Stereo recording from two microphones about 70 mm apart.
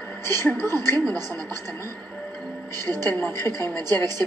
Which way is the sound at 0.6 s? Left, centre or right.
Left.